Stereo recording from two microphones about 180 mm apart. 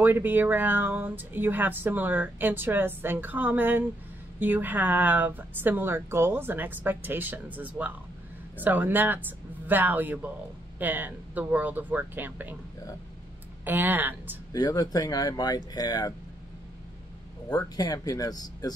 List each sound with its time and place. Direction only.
0.0 s speech: 10° right (ahead or behind)
13.7 s speech: 10° right (ahead or behind)
14.5 s speech: 20° left (ahead or behind)
17.7 s speech: 20° left (ahead or behind)